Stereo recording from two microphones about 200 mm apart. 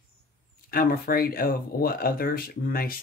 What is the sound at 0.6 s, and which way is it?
Speech, 45° left (ahead or behind).